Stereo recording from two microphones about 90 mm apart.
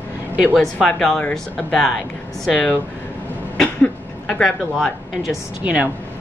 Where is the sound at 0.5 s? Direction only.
10° left (ahead or behind).